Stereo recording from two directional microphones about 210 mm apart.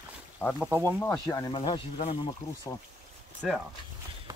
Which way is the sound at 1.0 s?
10° left (ahead or behind).